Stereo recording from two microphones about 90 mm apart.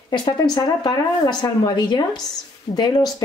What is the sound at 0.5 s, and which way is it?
A woman's voice, 45° left (ahead or behind).